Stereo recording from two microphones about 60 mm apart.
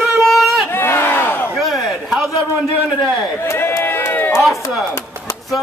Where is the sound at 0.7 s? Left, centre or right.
Left.